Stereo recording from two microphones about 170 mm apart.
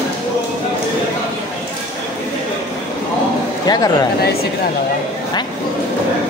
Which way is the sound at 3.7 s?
20° left (ahead or behind).